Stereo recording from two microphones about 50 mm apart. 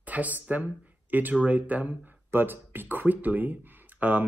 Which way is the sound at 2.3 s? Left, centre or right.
Right.